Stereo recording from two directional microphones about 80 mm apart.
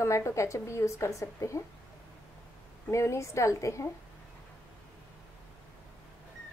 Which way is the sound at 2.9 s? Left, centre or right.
Left.